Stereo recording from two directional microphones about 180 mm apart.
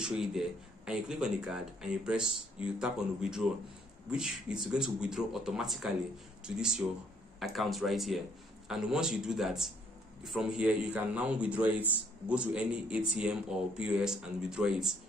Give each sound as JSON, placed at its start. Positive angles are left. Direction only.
{"t": 0.0, "sound": "a man's voice", "side_deg": 0}